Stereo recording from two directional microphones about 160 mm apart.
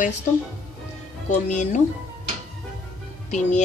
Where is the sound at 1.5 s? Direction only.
50° left (ahead or behind).